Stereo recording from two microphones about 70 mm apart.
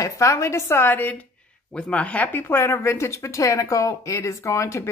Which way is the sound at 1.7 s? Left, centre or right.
Centre.